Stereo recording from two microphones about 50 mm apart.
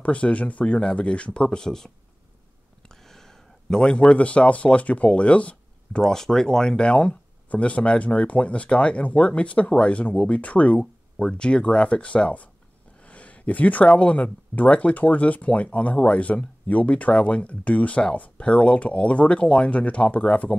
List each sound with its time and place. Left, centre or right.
0.0 s speech: left
2.9 s speech: centre; by 6.0 s left
6.0 s speech: centre